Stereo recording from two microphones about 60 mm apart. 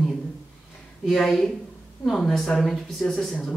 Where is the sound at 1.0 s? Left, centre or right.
Centre.